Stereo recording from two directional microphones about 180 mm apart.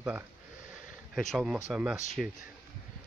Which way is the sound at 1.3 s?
Centre (ahead or behind).